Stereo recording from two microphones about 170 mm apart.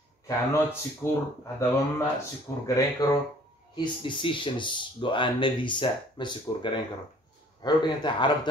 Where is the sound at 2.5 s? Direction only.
15° left (ahead or behind).